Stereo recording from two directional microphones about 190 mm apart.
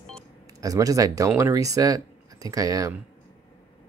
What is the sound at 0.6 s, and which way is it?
Speech, 20° right (ahead or behind).